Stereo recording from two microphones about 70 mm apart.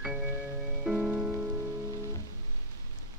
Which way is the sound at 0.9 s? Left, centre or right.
Centre.